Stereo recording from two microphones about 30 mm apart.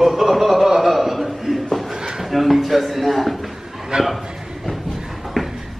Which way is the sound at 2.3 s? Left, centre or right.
Centre.